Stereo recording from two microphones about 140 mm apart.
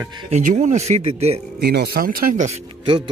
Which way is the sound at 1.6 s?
90° right.